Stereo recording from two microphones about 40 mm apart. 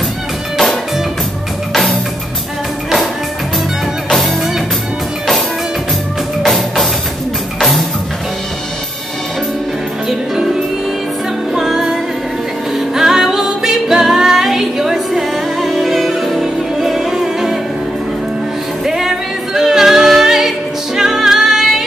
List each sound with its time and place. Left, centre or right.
1.7 s music: centre
6.4 s music: centre
10.0 s music: centre
11.5 s music: centre
18.9 s a capella: centre